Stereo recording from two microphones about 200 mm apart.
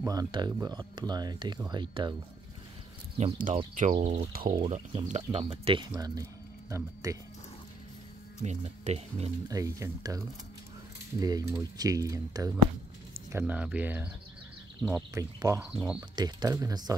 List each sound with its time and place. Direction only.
0.0 s speech: 20° right (ahead or behind)
3.3 s speech: 40° right (ahead or behind)
4.5 s speech: 25° right (ahead or behind)
8.4 s speech: 30° right (ahead or behind)
9.5 s speech: 15° right (ahead or behind)
14.8 s speech: centre (ahead or behind)
15.1 s speech: 15° right (ahead or behind)
15.7 s speech: 5° right (ahead or behind)
16.0 s speech: 20° right (ahead or behind)